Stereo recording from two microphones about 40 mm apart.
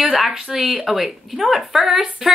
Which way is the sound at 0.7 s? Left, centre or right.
Centre.